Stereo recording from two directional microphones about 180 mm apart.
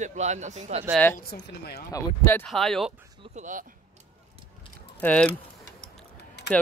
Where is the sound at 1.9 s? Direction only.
15° left (ahead or behind).